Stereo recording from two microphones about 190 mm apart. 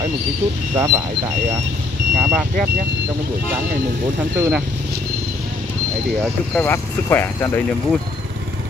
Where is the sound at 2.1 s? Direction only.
5° right (ahead or behind).